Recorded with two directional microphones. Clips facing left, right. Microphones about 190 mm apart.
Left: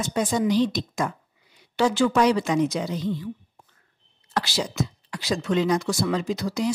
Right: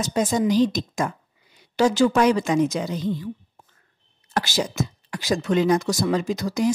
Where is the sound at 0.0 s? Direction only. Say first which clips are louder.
Right 2 dB; 40° right (ahead or behind).